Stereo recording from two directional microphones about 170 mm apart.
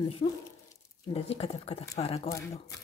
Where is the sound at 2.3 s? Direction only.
20° left (ahead or behind).